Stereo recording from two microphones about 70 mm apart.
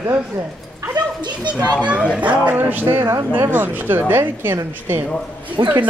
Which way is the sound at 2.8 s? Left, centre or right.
Right.